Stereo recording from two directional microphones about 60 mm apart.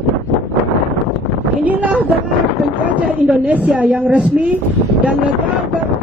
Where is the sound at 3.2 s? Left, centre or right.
Right.